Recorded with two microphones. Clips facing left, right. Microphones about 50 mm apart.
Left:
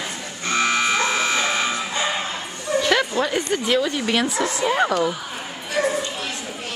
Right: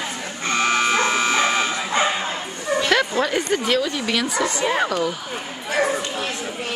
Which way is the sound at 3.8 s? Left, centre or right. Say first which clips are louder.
Left 1 dB; left.